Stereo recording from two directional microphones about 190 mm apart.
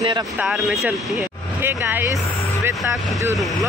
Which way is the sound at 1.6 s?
10° right (ahead or behind).